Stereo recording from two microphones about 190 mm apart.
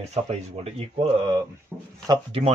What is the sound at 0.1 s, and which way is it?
Speech, 35° right (ahead or behind).